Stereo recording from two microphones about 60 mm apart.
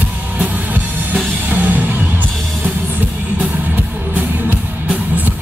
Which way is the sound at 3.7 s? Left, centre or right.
Right.